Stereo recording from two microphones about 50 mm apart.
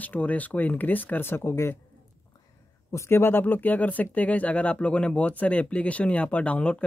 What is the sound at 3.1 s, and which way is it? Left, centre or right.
Speech, left.